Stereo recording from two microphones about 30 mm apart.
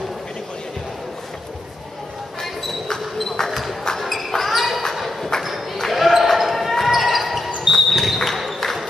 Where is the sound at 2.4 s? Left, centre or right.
Centre.